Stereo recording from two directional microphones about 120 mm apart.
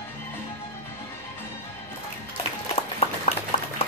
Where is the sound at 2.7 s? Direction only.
55° left (ahead or behind).